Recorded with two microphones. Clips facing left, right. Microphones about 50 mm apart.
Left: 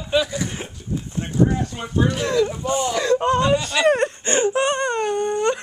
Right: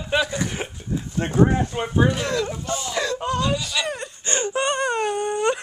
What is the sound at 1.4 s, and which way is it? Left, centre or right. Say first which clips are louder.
Speech: right 2 dB; right.